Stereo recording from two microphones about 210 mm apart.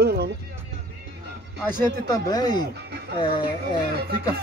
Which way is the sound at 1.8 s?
20° left (ahead or behind).